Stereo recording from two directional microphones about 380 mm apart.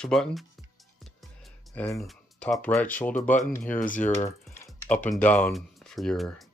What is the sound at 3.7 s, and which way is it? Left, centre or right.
Speech, left.